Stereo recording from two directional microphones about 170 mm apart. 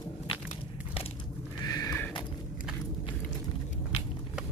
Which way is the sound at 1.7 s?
20° left (ahead or behind).